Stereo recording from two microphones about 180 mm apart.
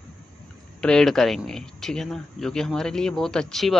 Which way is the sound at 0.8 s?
5° left (ahead or behind).